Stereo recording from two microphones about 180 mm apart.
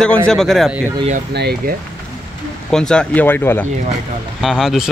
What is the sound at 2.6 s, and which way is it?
Speech, 5° left (ahead or behind).